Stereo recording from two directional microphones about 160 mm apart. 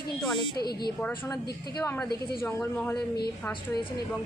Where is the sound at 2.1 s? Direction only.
80° left.